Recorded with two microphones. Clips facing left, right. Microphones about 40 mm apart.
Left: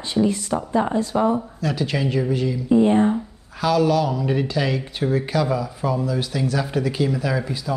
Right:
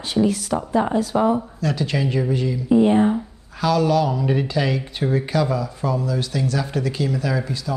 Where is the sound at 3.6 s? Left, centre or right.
Centre.